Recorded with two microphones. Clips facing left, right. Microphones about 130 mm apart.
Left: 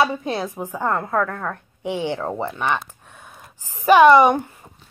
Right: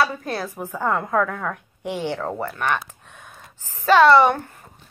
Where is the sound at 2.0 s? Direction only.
10° left (ahead or behind).